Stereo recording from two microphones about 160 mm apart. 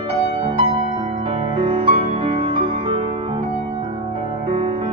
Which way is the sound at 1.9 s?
30° right (ahead or behind).